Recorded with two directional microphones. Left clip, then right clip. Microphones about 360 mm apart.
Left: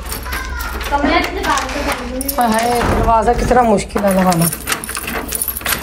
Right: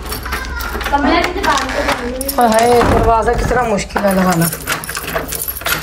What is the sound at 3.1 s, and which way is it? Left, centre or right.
Speech, centre.